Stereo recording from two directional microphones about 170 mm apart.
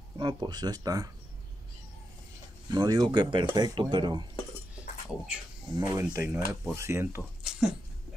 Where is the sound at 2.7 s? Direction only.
25° right (ahead or behind).